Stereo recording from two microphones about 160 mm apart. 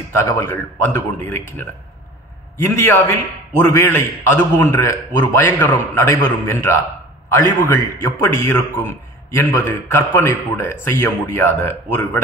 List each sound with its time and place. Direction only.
0.1 s a man's voice: 15° left (ahead or behind)
2.6 s a man's voice: 15° left (ahead or behind)